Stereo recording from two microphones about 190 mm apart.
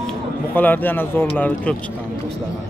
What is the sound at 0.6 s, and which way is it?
A man's voice, 10° left (ahead or behind).